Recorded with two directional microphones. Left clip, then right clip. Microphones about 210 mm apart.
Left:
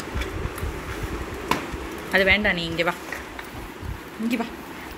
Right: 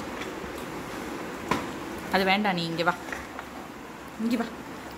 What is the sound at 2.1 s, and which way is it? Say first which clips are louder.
Speech: left 5 dB; 10° right (ahead or behind).